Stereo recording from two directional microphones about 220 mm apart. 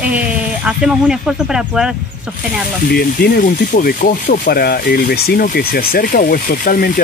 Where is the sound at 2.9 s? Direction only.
45° left (ahead or behind).